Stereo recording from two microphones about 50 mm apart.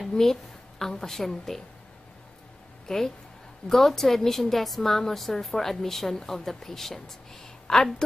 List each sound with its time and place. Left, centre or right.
0.1 s a woman's voice: centre
2.9 s a woman's voice: centre